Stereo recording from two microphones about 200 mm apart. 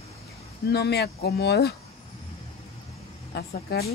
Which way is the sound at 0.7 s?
55° left (ahead or behind).